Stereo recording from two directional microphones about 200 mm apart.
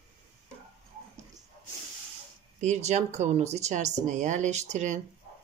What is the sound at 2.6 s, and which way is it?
Speech, 35° right (ahead or behind).